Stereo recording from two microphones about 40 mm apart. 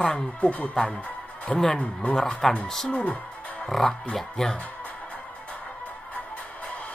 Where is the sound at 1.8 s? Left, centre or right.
Left.